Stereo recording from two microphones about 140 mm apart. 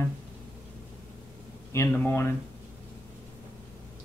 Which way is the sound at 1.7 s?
20° left (ahead or behind).